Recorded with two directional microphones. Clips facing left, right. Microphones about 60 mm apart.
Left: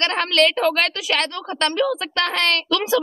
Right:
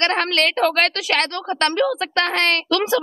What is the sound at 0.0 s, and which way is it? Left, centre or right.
Speech, right.